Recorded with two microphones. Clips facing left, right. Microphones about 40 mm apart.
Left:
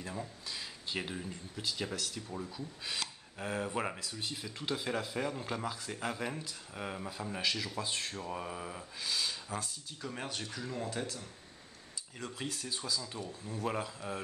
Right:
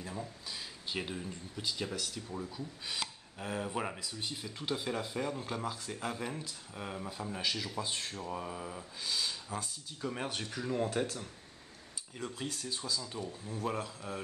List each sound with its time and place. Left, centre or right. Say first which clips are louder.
0.0 s speech: even; centre
9.0 s speech: even; centre
12.2 s speech: right 1 dB; centre